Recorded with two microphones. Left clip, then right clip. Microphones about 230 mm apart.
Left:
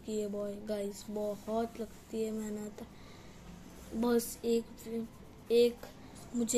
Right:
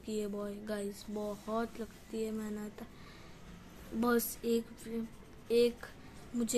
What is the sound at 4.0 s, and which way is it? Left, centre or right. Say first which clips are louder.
A woman's voice: left 1 dB; right.